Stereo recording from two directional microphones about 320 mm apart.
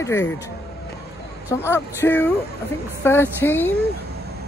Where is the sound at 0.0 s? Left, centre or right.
Centre.